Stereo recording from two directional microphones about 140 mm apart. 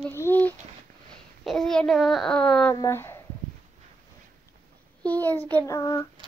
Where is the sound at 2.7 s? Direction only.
20° left (ahead or behind).